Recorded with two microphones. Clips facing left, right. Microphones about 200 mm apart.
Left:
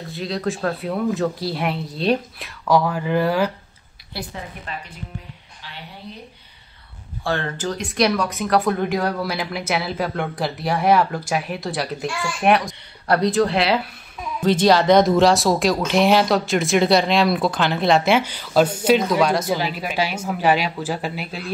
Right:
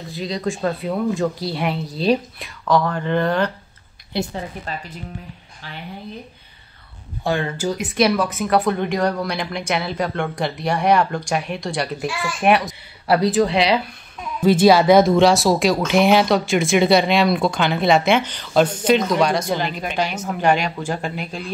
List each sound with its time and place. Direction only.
0.1 s speech: centre (ahead or behind)
4.1 s a woman's voice: 20° right (ahead or behind)
4.7 s speech: 35° right (ahead or behind)
7.2 s speech: 10° right (ahead or behind); by 21.5 s 5° left (ahead or behind)